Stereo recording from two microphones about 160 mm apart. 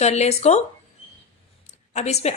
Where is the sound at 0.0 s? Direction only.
45° left (ahead or behind).